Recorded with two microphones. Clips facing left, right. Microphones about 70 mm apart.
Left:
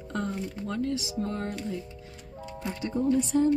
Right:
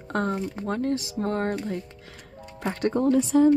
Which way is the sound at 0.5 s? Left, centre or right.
Right.